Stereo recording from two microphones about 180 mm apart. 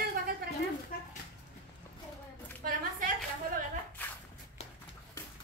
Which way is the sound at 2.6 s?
50° right (ahead or behind).